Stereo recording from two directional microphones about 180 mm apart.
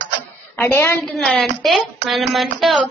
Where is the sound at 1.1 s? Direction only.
Centre (ahead or behind).